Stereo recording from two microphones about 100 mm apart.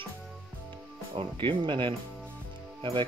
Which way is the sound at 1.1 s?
65° right (ahead or behind).